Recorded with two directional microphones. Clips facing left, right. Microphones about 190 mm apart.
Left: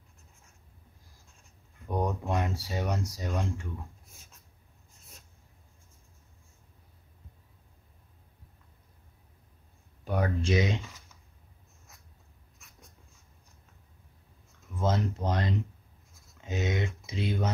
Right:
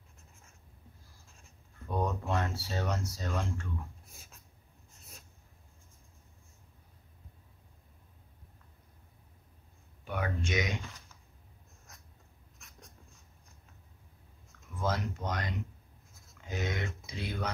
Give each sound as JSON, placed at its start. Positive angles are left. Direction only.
{"t": 1.9, "sound": "speech", "side_deg": 15}
{"t": 10.0, "sound": "speech", "side_deg": 35}
{"t": 14.8, "sound": "speech", "side_deg": 25}